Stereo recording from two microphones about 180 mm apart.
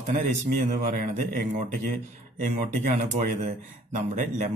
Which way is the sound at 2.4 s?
45° right (ahead or behind).